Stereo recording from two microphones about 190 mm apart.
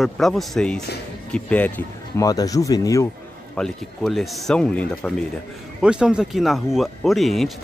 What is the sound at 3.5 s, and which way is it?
Speech, centre (ahead or behind).